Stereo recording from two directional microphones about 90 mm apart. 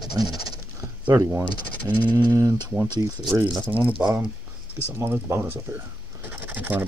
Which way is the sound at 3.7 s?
20° right (ahead or behind).